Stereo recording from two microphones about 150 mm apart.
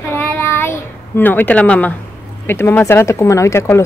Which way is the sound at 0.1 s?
15° left (ahead or behind).